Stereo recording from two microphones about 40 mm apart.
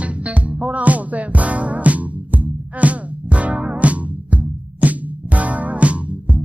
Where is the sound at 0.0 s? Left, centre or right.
Right.